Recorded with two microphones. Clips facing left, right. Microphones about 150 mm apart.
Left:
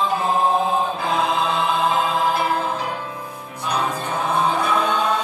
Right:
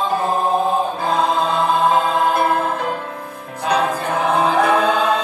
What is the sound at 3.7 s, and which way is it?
Choir, 80° right.